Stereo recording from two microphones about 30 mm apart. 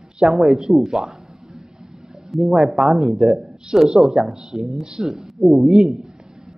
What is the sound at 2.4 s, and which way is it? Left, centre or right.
A woman's voice, centre.